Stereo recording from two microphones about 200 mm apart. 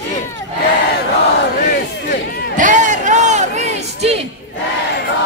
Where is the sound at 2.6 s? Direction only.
40° right (ahead or behind).